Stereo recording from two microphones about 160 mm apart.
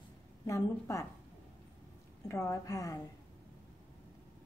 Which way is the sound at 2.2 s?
20° left (ahead or behind).